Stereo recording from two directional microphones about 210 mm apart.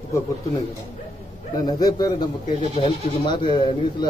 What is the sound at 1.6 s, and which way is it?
Speech, 20° left (ahead or behind).